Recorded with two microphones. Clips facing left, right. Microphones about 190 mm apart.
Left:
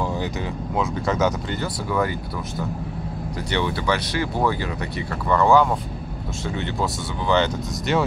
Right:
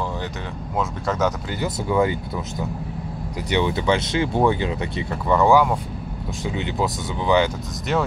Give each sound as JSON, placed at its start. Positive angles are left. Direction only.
{"t": 0.7, "sound": "speech", "side_deg": 0}
{"t": 1.6, "sound": "speech", "side_deg": -20}